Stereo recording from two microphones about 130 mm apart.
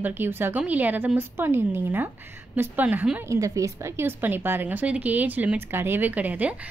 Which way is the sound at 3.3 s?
25° right (ahead or behind).